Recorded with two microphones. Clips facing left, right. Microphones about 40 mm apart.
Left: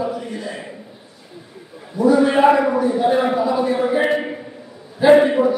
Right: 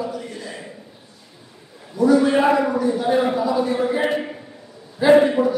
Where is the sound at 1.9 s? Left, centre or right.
Centre.